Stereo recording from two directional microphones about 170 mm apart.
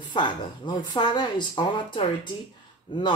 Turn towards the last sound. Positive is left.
turn(degrees=30)  # may be behind; listen again after turning